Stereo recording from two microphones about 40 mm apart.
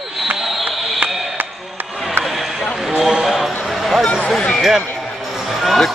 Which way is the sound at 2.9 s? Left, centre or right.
Centre.